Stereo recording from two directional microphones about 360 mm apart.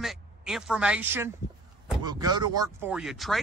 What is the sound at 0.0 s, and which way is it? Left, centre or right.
Speech, centre.